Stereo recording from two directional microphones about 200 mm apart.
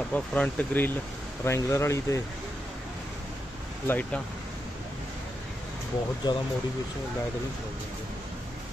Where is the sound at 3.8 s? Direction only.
10° left (ahead or behind).